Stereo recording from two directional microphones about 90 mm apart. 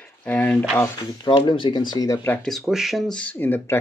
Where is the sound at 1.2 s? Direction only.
65° left (ahead or behind).